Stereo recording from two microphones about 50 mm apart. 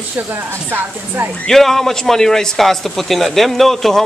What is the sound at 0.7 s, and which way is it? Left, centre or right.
Speech, right.